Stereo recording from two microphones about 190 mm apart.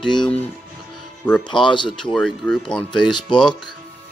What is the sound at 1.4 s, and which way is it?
Speech, 25° left (ahead or behind).